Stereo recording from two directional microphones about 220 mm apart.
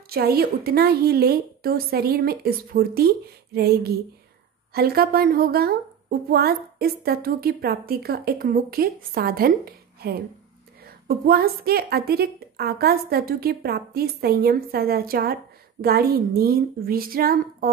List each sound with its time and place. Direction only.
0.1 s speech: 45° right (ahead or behind)